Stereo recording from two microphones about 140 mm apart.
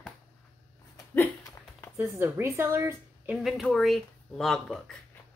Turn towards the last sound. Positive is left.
turn(degrees=5)  # may be behind; listen again after turning